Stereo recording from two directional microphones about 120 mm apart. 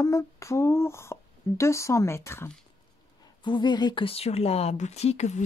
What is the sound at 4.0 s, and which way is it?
Speech, 55° left (ahead or behind).